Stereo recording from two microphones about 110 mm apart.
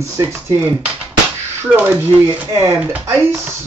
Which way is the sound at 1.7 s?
15° right (ahead or behind).